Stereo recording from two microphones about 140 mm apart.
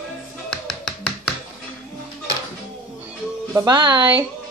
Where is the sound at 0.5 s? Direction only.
5° left (ahead or behind).